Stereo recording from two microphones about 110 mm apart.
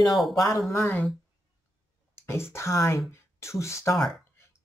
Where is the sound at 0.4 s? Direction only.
35° left (ahead or behind).